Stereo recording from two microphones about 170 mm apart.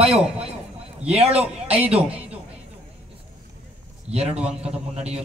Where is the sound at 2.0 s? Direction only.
10° right (ahead or behind).